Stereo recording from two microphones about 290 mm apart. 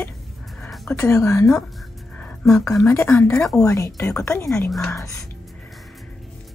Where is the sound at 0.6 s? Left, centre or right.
Centre.